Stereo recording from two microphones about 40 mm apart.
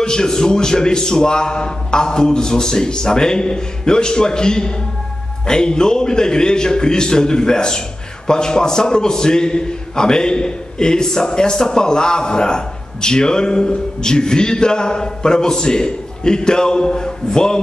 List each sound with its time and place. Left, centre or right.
0.0 s a man's voice: centre